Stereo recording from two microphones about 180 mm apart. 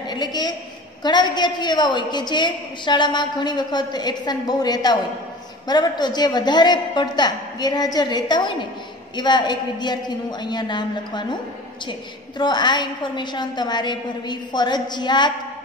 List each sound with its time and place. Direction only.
0.0 s a woman's voice: 25° left (ahead or behind)